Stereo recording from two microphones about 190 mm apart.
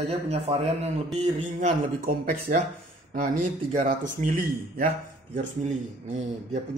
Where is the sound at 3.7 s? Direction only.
40° right (ahead or behind).